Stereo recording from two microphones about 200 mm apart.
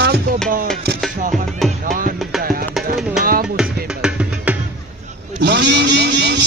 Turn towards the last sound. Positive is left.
turn(degrees=-60)  # may be behind; listen again after turning